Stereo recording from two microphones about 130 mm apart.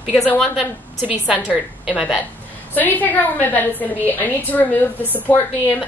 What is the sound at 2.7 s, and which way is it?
A woman's voice, 15° left (ahead or behind).